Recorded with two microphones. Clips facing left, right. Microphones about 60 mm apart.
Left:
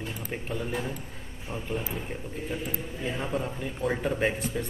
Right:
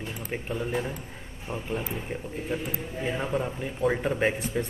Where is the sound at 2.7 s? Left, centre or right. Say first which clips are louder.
Right 2 dB; centre.